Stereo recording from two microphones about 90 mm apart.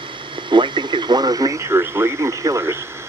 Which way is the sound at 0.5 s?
60° right (ahead or behind).